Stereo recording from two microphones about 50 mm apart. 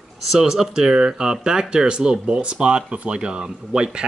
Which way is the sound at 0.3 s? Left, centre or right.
Centre.